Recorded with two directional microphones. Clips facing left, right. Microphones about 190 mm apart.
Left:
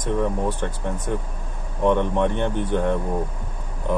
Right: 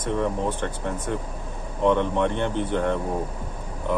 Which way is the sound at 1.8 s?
15° left (ahead or behind).